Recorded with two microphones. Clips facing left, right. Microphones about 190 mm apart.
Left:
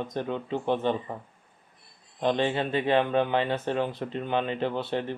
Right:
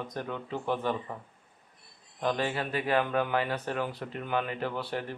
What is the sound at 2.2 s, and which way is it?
Speech, 25° left (ahead or behind).